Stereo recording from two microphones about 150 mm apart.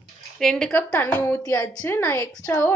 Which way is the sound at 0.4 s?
5° left (ahead or behind).